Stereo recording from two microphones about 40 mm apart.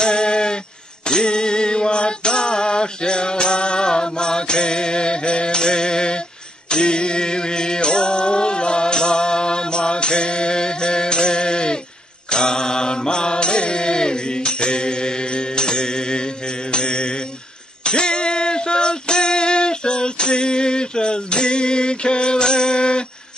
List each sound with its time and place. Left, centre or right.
0.0 s a sound: left
1.0 s mantra: left
17.8 s music: left